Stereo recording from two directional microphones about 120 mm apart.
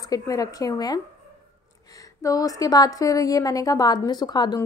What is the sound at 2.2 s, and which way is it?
Speech, 30° left (ahead or behind).